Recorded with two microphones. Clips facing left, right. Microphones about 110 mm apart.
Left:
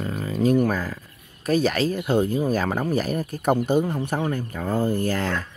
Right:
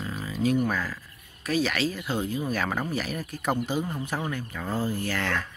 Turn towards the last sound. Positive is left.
turn(degrees=40)  # may be behind; listen again after turning